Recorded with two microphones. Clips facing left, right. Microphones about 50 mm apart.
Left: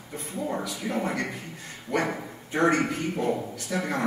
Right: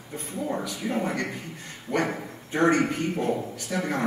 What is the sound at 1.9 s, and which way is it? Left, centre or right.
Speech, centre.